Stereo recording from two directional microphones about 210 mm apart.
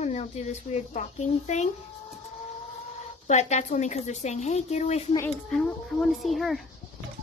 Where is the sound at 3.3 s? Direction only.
35° left (ahead or behind).